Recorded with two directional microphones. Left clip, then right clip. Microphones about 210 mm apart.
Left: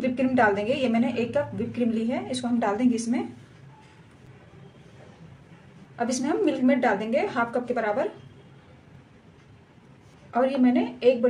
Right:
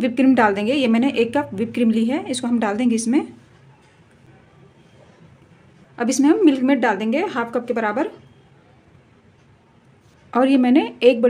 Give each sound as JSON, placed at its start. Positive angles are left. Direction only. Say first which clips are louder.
{"t": 0.0, "sound": "a woman's voice", "louder": "right 6 dB", "side_deg": -55}
{"t": 5.9, "sound": "a woman's voice", "louder": "right 9 dB", "side_deg": -55}
{"t": 10.3, "sound": "a woman's voice", "louder": "right 6 dB", "side_deg": -55}